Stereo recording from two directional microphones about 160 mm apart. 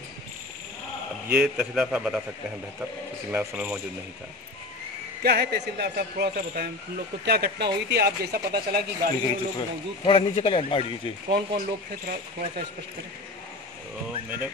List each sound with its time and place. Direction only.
1.3 s a man's voice: 5° right (ahead or behind)
3.3 s speech: 10° right (ahead or behind)
5.2 s speech: 80° right
9.6 s speech: 35° left (ahead or behind)
11.3 s speech: 65° right (ahead or behind)